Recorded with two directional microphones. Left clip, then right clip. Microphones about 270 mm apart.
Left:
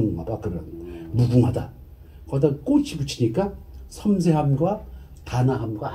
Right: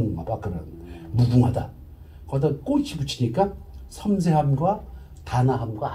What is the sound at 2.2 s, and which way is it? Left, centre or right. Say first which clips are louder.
Speech: left 3 dB; right.